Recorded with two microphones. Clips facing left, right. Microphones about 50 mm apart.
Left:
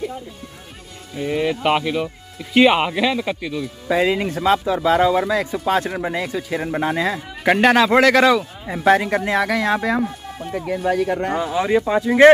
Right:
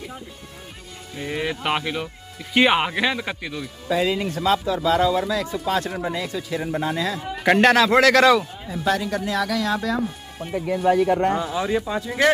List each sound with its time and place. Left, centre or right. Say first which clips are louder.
1.1 s speech: left 6 dB; centre
3.9 s speech: left 3 dB; left
7.4 s a man's voice: left 1 dB; centre
8.6 s speech: left 7 dB; left
10.4 s speech: right 1 dB; centre
11.5 s speech: left 6 dB; left